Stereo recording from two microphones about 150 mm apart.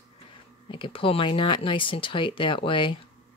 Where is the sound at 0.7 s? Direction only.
35° left (ahead or behind).